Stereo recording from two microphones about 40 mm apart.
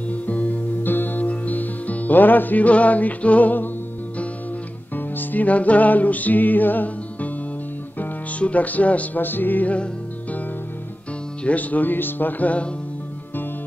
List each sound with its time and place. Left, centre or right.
0.1 s music: left
0.8 s music: left
1.2 s music: left
4.9 s music: left
8.4 s speech: left
9.2 s music: left
11.4 s speech: left